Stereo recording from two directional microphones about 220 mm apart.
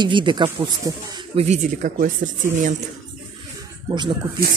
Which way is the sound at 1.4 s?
35° right (ahead or behind).